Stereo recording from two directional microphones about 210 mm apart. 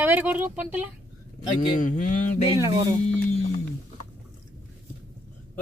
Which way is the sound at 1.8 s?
35° left (ahead or behind).